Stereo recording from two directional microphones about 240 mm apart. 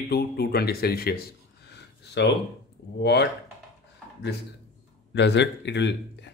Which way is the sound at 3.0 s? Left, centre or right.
Left.